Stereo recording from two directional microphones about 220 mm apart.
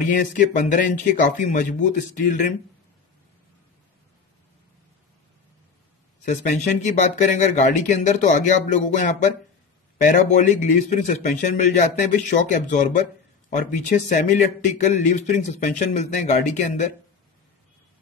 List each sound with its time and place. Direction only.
0.1 s a man's voice: 35° left (ahead or behind)
6.2 s a man's voice: 35° left (ahead or behind)